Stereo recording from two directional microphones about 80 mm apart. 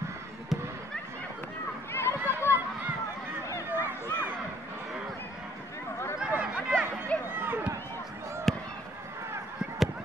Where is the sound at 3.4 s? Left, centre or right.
Left.